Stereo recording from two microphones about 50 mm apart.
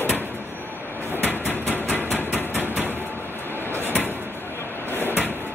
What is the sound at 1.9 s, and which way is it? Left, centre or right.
Hammer, left.